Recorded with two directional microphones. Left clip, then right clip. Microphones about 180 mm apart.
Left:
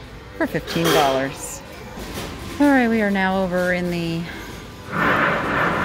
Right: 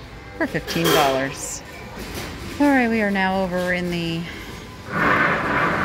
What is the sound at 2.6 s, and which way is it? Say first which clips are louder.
A woman's voice: left 1 dB; 10° left (ahead or behind).